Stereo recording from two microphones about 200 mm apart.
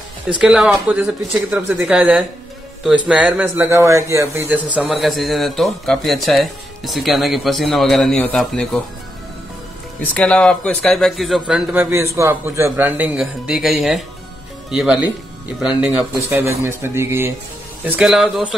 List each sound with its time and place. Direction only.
0.4 s a man's voice: 5° right (ahead or behind)
10.1 s a man's voice: 5° left (ahead or behind)